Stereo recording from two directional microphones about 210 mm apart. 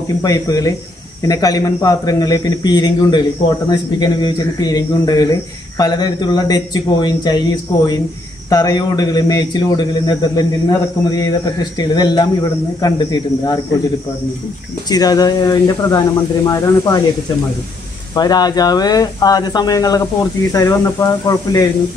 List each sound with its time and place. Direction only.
0.2 s a man's voice: 15° left (ahead or behind)
14.9 s a man's voice: 20° left (ahead or behind)
18.1 s a man's voice: 20° left (ahead or behind)